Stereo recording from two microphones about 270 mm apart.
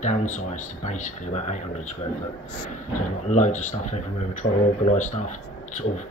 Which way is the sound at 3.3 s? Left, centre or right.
Left.